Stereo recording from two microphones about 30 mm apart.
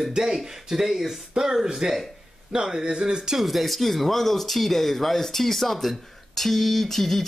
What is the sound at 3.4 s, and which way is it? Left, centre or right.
Speech, centre.